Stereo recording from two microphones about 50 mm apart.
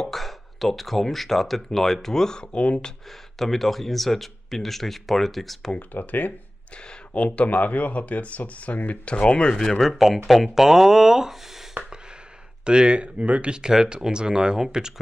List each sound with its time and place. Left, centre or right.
0.1 s speech: centre; by 2.9 s left
3.3 s speech: centre
5.8 s speech: left
7.3 s speech: left
9.6 s speech: centre
11.8 s a sound: right
12.6 s speech: centre